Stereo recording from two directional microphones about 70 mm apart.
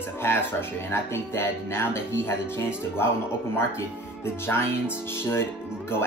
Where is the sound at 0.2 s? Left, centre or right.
Left.